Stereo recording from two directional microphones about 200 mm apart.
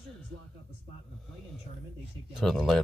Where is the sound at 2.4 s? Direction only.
Centre (ahead or behind).